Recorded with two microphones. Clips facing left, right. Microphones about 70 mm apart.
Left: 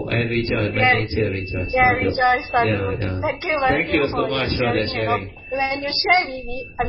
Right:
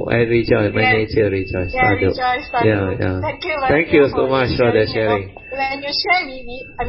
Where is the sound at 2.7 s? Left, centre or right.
Right.